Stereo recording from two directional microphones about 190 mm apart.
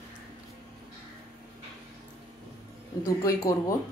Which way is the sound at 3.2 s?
15° left (ahead or behind).